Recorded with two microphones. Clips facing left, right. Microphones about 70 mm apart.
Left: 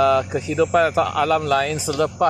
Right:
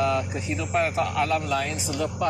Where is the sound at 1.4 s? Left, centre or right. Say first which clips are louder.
Left 7 dB; left.